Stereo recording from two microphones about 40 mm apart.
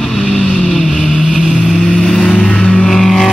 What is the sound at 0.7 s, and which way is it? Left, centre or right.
Vehicle, centre.